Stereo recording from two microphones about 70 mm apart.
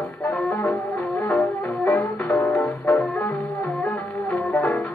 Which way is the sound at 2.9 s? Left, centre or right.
Centre.